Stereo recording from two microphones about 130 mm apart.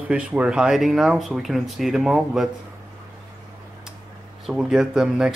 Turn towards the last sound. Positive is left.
turn(degrees=-5)  # may be behind; listen again after turning